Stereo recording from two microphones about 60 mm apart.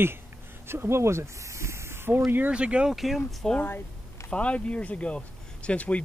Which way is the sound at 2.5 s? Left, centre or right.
Centre.